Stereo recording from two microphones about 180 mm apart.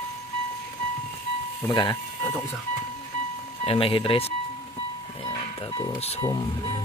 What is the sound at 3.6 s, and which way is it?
Speech, 30° left (ahead or behind).